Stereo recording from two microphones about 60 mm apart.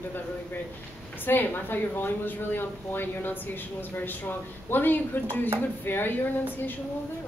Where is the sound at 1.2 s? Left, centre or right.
Left.